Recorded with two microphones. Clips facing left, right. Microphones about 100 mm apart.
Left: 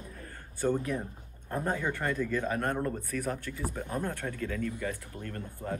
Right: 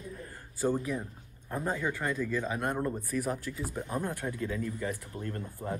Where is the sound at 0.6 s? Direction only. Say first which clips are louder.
Left 1 dB; 10° right (ahead or behind).